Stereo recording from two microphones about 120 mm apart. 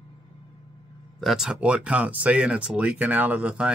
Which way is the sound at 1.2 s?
Centre (ahead or behind).